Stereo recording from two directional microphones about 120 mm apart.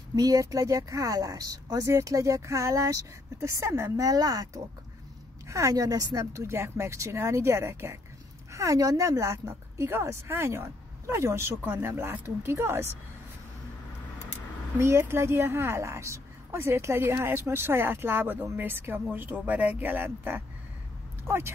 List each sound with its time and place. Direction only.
0.1 s speech: 30° right (ahead or behind)
5.5 s speech: 30° right (ahead or behind)
14.8 s speech: 20° right (ahead or behind)
21.2 s a sound: 20° right (ahead or behind)